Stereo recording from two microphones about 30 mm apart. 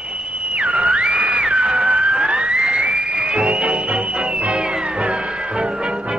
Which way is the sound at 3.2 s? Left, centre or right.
Right.